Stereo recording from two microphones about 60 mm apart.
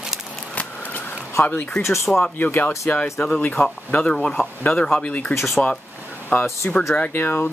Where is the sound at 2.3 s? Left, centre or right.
Left.